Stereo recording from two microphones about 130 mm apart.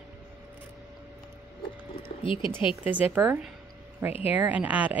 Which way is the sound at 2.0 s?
40° left (ahead or behind).